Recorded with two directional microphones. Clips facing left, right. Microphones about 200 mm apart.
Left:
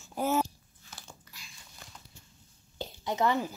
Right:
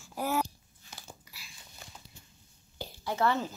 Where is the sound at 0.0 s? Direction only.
20° left (ahead or behind).